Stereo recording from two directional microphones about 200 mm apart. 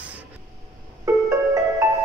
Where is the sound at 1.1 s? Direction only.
15° right (ahead or behind).